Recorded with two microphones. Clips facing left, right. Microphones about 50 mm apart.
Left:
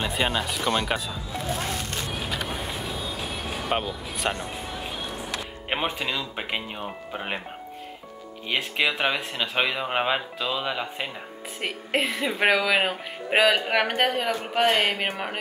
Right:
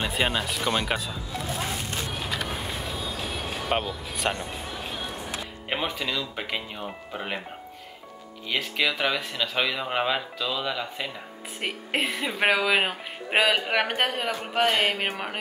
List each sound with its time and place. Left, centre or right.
0.0 s speech: centre
2.2 s vehicle: centre
5.7 s speech: centre
8.5 s speech: left
11.6 s speech: centre